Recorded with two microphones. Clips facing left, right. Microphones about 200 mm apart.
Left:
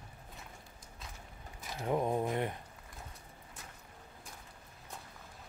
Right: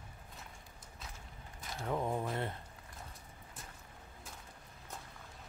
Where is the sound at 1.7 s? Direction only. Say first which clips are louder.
Left 4 dB; 20° left (ahead or behind).